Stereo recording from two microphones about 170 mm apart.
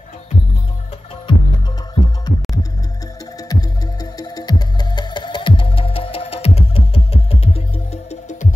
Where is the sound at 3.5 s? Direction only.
25° left (ahead or behind).